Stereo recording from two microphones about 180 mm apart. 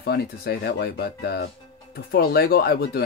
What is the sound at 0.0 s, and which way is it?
Speech, 65° left (ahead or behind).